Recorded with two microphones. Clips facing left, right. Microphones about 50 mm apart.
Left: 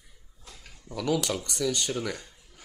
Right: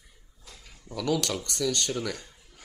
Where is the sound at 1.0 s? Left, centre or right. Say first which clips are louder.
Even; centre.